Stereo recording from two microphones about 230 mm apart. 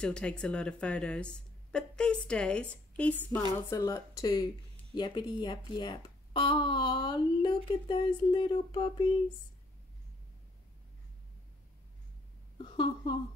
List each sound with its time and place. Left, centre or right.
0.0 s a woman's voice: centre; by 9.0 s left
12.5 s a woman's voice: left